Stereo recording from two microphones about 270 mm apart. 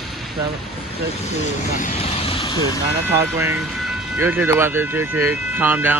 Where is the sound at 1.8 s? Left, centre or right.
Left.